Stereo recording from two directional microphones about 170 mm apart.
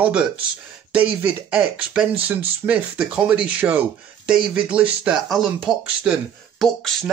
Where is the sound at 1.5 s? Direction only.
5° right (ahead or behind).